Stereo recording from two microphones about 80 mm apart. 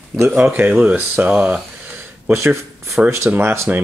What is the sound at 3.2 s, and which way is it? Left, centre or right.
Speech, right.